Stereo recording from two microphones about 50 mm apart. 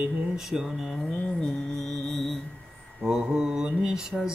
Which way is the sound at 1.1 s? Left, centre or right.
Left.